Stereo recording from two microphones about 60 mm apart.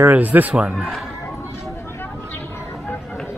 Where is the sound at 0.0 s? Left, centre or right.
Right.